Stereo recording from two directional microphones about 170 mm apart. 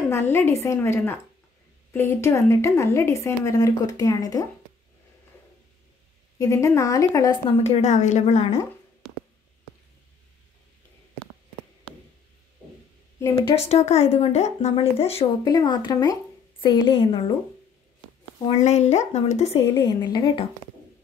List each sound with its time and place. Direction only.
0.1 s a woman's voice: 15° left (ahead or behind)
6.3 s a woman's voice: 20° left (ahead or behind)
7.4 s speech: 40° left (ahead or behind)
13.2 s a woman's voice: 15° left (ahead or behind)
13.6 s speech: 40° left (ahead or behind)
15.4 s a woman's voice: 25° left (ahead or behind)
18.6 s speech: 40° left (ahead or behind)
19.6 s a woman's voice: 15° left (ahead or behind)